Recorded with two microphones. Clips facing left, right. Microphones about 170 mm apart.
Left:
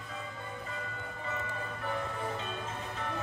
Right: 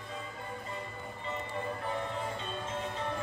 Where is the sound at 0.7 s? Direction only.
20° right (ahead or behind).